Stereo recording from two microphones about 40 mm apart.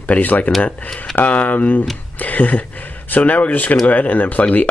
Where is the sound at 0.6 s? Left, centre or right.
Left.